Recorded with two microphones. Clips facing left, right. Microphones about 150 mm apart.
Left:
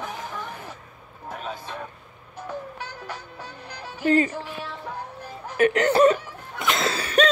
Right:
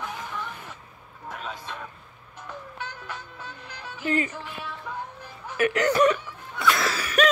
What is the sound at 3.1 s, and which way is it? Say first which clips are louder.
Music: left 2 dB; 40° left (ahead or behind).